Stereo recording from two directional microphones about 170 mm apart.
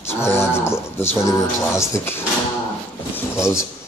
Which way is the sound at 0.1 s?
15° left (ahead or behind).